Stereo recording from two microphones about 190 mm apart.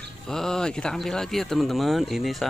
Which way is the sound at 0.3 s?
5° left (ahead or behind).